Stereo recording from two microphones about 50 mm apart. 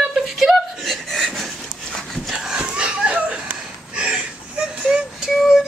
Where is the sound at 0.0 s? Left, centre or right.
Centre.